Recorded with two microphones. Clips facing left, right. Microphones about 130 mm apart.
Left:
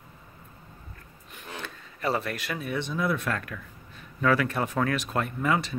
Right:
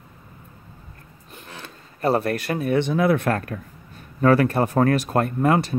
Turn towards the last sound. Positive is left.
turn(degrees=-45)  # may be behind; listen again after turning